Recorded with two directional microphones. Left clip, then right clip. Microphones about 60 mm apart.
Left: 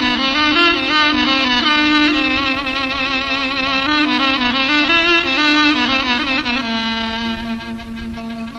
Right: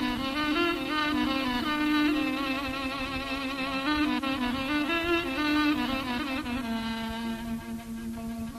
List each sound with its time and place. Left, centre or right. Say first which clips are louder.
0.2 s music: left 15 dB; right
1.8 s music: left 13 dB; right
2.5 s music: left 13 dB; centre
3.3 s music: left 14 dB; right
4.2 s music: left 15 dB; centre
4.6 s violin: left 17 dB; right
5.7 s violin: left 14 dB; centre
6.1 s music: left 15 dB; right
6.8 s music: left 14 dB; centre